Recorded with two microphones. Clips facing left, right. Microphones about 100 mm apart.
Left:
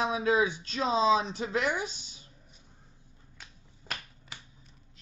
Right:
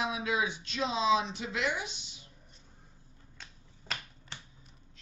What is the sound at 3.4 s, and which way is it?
Finger snapping, 10° left (ahead or behind).